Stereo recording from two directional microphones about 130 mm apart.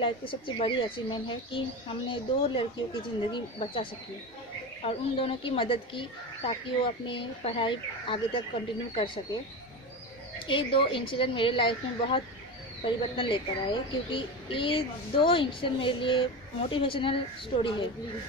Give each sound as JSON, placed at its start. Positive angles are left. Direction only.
{"t": 0.0, "sound": "a woman's voice", "side_deg": 40}
{"t": 10.4, "sound": "a woman's voice", "side_deg": 40}